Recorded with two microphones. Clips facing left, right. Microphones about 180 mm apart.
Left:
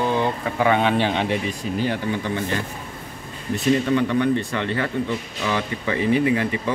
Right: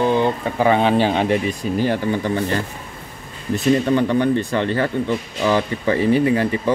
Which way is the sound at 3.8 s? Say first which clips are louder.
Right 3 dB; 35° right (ahead or behind).